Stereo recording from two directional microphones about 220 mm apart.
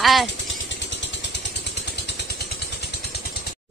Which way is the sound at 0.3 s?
55° left (ahead or behind).